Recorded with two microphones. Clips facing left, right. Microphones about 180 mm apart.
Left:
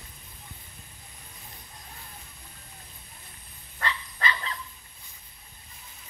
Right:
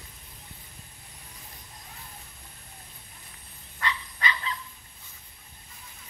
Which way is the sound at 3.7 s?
40° left (ahead or behind).